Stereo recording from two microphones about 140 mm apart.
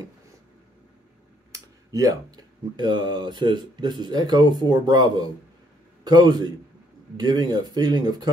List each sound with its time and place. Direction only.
1.5 s a man's voice: 25° right (ahead or behind)